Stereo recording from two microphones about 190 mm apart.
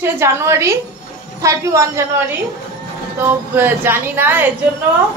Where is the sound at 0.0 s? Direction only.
15° right (ahead or behind).